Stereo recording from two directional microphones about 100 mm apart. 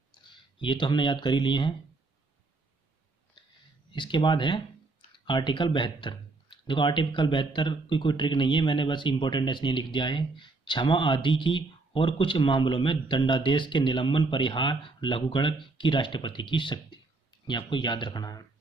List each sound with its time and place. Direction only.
0.3 s speech: 55° left (ahead or behind)
3.4 s a sound: 50° left (ahead or behind)
3.9 s speech: 55° left (ahead or behind)